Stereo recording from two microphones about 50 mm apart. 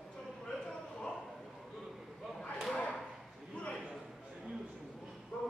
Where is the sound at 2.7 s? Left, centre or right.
Centre.